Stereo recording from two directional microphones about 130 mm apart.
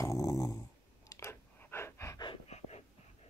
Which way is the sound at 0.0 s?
25° left (ahead or behind).